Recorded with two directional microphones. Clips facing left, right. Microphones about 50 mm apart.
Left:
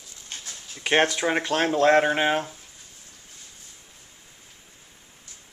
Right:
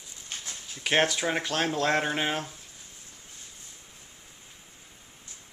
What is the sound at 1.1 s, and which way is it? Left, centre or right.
Speech, centre.